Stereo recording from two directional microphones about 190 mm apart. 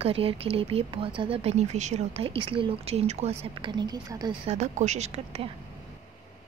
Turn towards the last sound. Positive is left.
turn(degrees=-35)  # may be behind; listen again after turning